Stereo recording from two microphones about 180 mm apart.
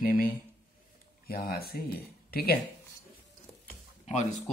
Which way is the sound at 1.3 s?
55° left (ahead or behind).